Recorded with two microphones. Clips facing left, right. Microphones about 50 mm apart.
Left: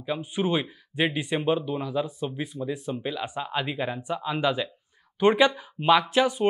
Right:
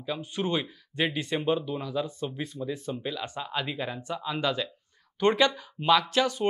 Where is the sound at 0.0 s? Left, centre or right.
Centre.